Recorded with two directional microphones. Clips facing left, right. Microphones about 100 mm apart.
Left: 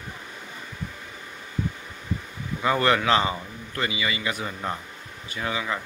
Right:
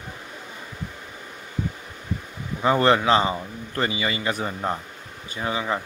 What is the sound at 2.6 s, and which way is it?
A man's voice, 30° right (ahead or behind).